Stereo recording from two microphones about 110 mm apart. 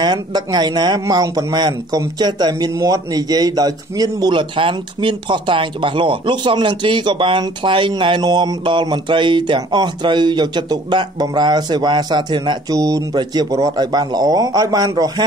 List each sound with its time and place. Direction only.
0.0 s speech: 40° right (ahead or behind)